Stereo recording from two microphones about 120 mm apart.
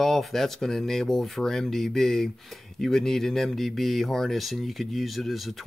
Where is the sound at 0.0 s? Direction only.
5° left (ahead or behind).